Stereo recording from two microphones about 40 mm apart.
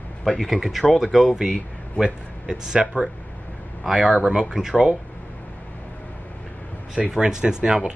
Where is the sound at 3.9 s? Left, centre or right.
Right.